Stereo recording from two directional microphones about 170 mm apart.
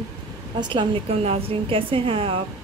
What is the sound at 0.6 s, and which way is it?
A woman's voice, 30° right (ahead or behind).